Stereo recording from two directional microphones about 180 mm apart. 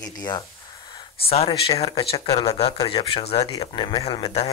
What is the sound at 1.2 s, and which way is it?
Speech, 35° left (ahead or behind).